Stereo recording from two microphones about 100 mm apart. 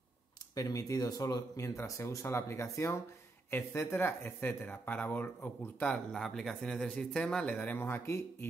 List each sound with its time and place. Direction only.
0.6 s speech: 35° left (ahead or behind); by 5.9 s 20° left (ahead or behind)
6.1 s speech: 5° left (ahead or behind); by 8.5 s 25° left (ahead or behind)